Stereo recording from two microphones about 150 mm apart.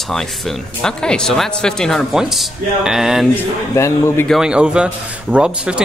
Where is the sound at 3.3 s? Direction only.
15° left (ahead or behind).